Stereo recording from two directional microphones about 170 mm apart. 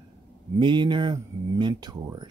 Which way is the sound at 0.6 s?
25° right (ahead or behind).